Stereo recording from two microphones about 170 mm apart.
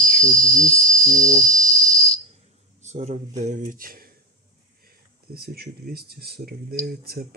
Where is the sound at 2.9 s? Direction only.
40° right (ahead or behind).